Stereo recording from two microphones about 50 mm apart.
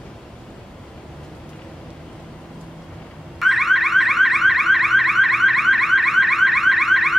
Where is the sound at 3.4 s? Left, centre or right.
Centre.